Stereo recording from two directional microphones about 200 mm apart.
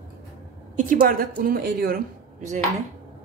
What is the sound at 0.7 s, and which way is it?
Speech, 45° right (ahead or behind).